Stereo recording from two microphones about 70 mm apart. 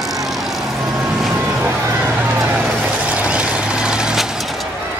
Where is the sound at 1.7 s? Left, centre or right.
Right.